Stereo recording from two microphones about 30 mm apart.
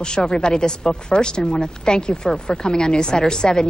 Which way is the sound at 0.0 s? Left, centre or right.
Left.